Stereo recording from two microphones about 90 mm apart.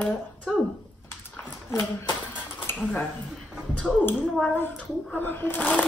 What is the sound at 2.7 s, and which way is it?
Dishes, 30° left (ahead or behind).